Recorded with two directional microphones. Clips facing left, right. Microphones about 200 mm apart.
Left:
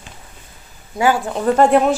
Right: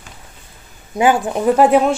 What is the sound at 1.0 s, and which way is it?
Speech, 15° right (ahead or behind).